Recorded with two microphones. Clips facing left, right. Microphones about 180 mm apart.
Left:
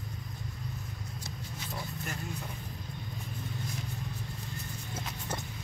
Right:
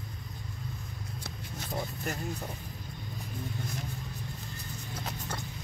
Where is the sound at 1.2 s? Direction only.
45° right (ahead or behind).